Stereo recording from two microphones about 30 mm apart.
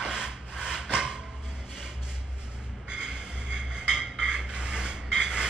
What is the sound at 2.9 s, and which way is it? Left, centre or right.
Music, right.